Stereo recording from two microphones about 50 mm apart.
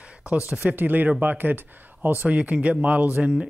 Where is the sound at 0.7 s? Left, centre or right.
Right.